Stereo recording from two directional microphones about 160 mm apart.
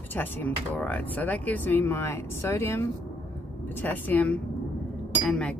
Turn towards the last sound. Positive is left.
turn(degrees=5)  # may be behind; listen again after turning